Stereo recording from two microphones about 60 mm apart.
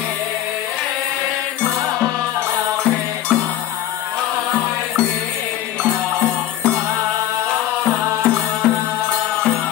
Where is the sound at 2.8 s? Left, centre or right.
Centre.